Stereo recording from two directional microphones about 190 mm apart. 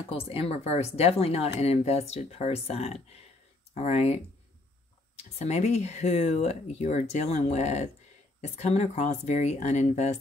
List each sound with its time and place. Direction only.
0.1 s speech: 30° left (ahead or behind)
5.4 s speech: 35° left (ahead or behind)